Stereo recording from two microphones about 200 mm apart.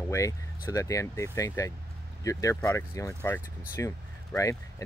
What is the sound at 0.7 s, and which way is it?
Speech, 15° left (ahead or behind).